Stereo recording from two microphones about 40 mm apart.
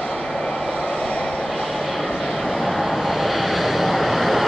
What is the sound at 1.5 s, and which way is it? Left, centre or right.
Vehicle, centre.